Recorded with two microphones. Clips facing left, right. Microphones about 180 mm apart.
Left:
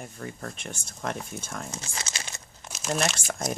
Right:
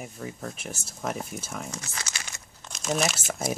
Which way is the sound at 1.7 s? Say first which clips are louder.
Left 1 dB; 25° left (ahead or behind).